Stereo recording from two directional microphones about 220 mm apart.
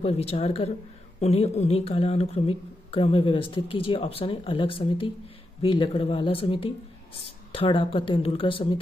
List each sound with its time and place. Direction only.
0.0 s speech: 25° left (ahead or behind)